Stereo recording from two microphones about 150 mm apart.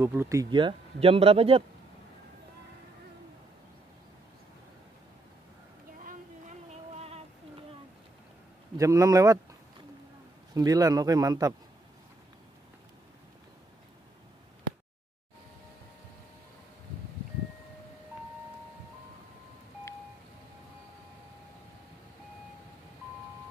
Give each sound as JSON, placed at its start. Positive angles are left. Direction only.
{"t": 0.0, "sound": "speech", "side_deg": -15}
{"t": 8.7, "sound": "a man's voice", "side_deg": -20}
{"t": 10.5, "sound": "a man's voice", "side_deg": -25}